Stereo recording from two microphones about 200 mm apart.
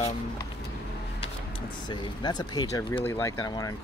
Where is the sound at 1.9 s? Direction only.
20° left (ahead or behind).